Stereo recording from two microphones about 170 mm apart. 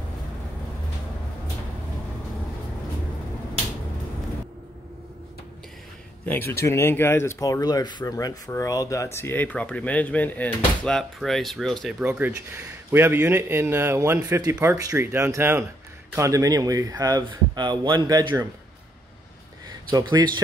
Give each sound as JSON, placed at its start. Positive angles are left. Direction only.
{"t": 6.2, "sound": "speech", "side_deg": 10}
{"t": 12.0, "sound": "a man's voice", "side_deg": -10}
{"t": 19.7, "sound": "speech", "side_deg": -25}